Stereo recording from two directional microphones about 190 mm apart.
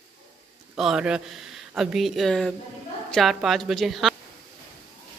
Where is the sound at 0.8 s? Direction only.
5° right (ahead or behind).